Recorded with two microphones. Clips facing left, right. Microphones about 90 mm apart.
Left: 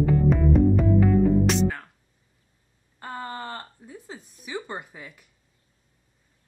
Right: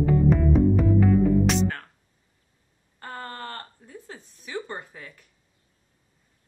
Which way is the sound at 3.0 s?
15° left (ahead or behind).